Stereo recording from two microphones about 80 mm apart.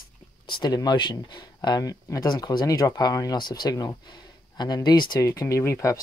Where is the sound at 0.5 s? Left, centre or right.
Left.